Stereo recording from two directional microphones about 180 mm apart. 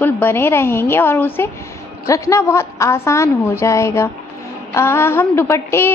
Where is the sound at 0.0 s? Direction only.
10° left (ahead or behind).